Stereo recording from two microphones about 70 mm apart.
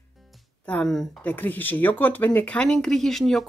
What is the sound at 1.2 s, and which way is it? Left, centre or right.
Speech, left.